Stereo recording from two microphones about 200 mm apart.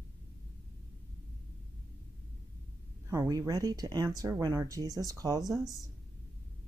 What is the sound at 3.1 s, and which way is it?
Speech, 15° right (ahead or behind).